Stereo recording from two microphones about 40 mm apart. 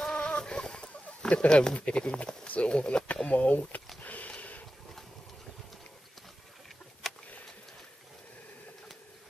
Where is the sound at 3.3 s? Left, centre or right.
Left.